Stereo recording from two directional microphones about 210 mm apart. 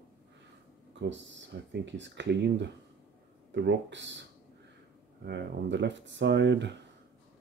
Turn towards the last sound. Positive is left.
turn(degrees=-55)  # may be behind; listen again after turning